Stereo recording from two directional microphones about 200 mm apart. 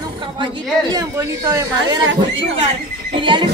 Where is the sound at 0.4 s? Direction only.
20° right (ahead or behind).